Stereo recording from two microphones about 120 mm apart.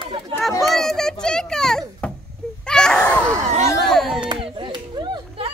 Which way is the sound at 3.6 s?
Centre (ahead or behind).